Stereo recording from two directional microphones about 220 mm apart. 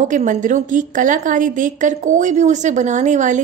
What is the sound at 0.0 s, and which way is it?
A woman's voice, 35° right (ahead or behind).